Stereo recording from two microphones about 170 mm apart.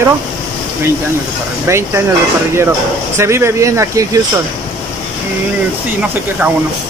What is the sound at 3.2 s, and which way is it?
Speech, 15° right (ahead or behind).